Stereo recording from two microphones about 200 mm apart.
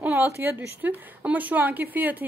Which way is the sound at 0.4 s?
10° right (ahead or behind).